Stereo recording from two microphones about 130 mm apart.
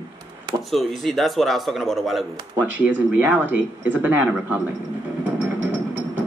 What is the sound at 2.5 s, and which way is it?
Speech, 15° right (ahead or behind).